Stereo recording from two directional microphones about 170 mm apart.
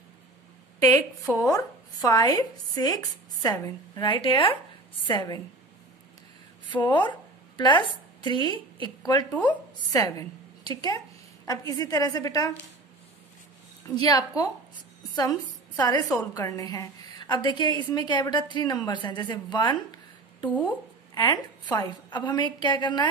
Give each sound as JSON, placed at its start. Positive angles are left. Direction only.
{"t": 1.2, "sound": "a woman's voice", "side_deg": 20}
{"t": 6.8, "sound": "a woman's voice", "side_deg": 25}
{"t": 9.3, "sound": "a woman's voice", "side_deg": 10}
{"t": 9.8, "sound": "a woman's voice", "side_deg": 20}
{"t": 13.8, "sound": "a woman's voice", "side_deg": 20}
{"t": 21.1, "sound": "a woman's voice", "side_deg": 25}